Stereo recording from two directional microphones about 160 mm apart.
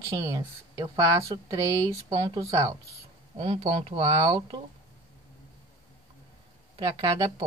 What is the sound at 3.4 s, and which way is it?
Speech, 35° right (ahead or behind).